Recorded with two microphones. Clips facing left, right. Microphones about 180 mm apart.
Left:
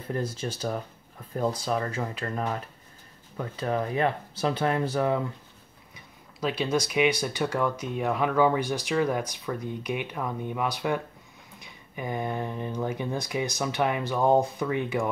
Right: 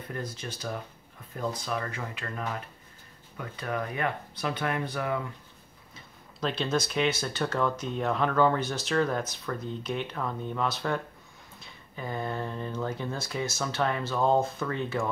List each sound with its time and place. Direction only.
0.4 s speech: 30° left (ahead or behind)
1.7 s speech: 30° left (ahead or behind)
5.9 s speech: 10° left (ahead or behind)